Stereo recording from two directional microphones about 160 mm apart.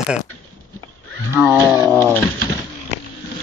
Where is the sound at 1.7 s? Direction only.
15° right (ahead or behind).